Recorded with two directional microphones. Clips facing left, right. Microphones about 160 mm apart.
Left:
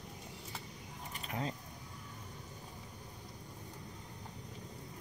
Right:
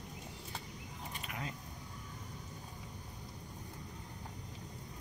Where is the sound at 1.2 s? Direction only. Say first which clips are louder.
Left 6 dB; 35° left (ahead or behind).